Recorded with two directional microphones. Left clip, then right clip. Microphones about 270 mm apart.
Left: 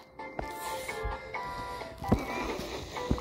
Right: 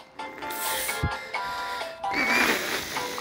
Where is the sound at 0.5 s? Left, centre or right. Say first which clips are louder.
Right 10 dB; right.